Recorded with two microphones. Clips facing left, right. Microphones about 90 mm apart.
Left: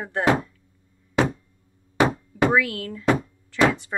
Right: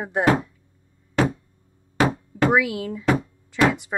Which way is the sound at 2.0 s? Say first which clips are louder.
Even; 20° left (ahead or behind).